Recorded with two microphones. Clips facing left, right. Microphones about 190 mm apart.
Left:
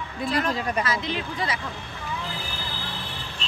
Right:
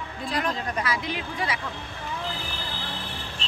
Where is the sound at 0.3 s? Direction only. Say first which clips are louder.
Left 3 dB; 15° right (ahead or behind).